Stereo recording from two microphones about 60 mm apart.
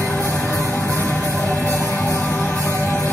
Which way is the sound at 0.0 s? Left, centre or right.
Left.